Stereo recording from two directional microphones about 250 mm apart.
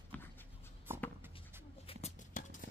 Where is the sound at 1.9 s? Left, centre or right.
Left.